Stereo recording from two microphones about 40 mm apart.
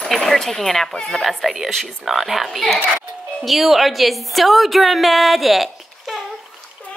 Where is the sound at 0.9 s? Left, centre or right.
Left.